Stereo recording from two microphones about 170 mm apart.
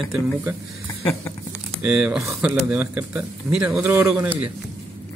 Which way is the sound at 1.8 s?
5° right (ahead or behind).